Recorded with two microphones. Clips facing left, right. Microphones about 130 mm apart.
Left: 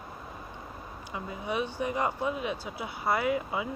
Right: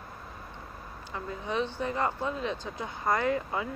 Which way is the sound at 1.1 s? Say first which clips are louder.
Right 1 dB; 15° left (ahead or behind).